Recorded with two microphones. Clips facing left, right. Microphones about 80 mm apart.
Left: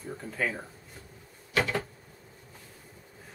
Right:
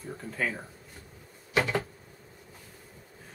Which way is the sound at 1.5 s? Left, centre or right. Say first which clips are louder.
Right 1 dB; centre.